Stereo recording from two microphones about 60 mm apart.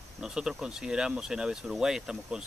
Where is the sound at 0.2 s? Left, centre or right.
Centre.